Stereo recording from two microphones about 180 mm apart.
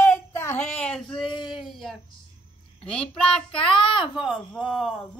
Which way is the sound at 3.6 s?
30° left (ahead or behind).